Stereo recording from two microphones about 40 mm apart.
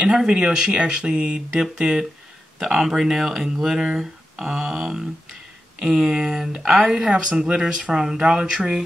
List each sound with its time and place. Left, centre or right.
0.0 s speech: centre
7.1 s speech: right